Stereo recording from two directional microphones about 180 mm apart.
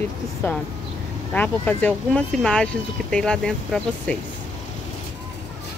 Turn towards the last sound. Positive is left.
turn(degrees=5)  # may be behind; listen again after turning